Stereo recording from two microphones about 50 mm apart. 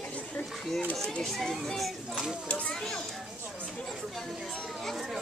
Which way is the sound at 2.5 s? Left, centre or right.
Left.